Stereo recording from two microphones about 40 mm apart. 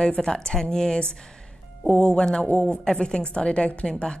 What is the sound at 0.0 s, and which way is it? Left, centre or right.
A woman's voice, left.